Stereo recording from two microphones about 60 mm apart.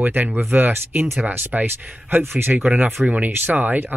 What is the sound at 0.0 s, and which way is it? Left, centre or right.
Speech, right.